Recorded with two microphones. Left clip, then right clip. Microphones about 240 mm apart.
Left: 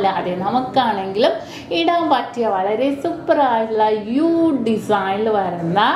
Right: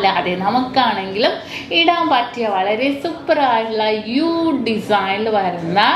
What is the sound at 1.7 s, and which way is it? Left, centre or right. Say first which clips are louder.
A woman's voice: right 2 dB; left.